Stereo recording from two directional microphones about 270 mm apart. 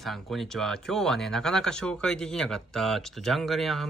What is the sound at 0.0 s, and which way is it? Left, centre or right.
Speech, centre.